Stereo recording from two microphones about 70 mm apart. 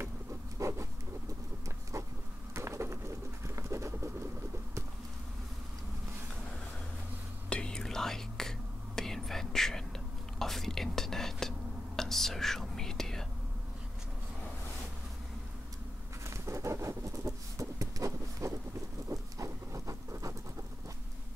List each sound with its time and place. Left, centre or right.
0.6 s insect: right
2.5 s a sound: right
3.4 s pigeon: right
7.4 s whispering: centre
16.3 s patter: right
19.0 s a sound: right